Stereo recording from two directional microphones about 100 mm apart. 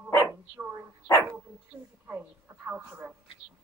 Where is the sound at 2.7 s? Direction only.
20° right (ahead or behind).